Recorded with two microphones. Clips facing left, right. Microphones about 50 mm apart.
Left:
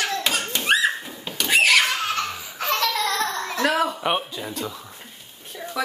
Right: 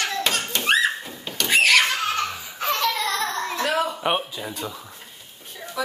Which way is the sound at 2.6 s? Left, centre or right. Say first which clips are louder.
Left 1 dB; left.